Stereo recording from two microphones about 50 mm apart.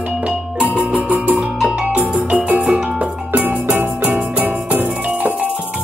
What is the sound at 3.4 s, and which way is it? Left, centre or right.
Music, right.